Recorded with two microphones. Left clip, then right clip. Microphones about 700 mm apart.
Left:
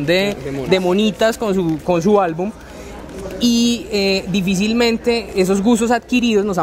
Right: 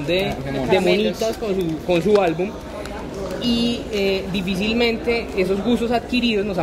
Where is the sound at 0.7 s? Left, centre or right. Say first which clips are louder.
Left 1 dB; left.